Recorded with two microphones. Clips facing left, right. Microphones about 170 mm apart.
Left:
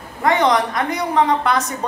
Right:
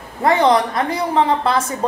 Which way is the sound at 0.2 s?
30° right (ahead or behind).